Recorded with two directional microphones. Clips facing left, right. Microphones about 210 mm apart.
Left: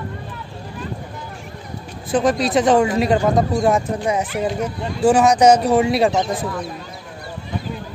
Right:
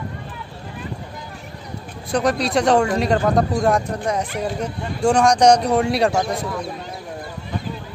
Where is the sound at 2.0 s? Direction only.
Centre (ahead or behind).